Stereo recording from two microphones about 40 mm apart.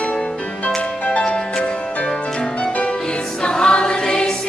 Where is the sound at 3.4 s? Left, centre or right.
Left.